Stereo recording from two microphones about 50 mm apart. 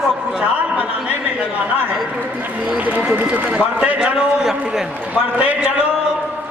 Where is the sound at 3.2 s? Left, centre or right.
Right; by 4.8 s centre.